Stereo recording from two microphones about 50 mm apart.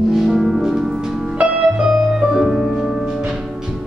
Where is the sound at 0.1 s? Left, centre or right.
Centre.